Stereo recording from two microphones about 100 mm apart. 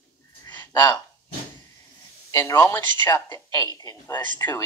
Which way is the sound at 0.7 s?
40° left (ahead or behind).